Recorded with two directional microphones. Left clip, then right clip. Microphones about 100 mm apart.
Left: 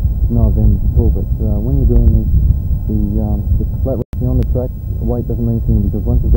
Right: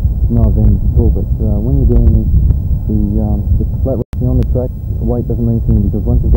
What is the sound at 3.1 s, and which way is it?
Speech, 20° right (ahead or behind).